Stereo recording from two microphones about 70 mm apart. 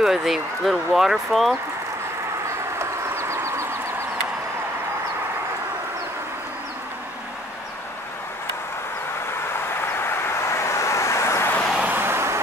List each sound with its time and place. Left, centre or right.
0.0 s speech: centre
2.8 s bird: right
9.8 s vehicle: left
11.8 s vehicle: right